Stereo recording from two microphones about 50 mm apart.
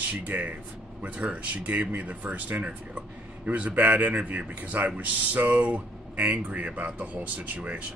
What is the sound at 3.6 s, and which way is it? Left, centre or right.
Speech, right.